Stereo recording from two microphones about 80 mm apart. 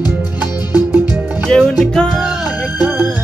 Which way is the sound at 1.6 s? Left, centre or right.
Centre.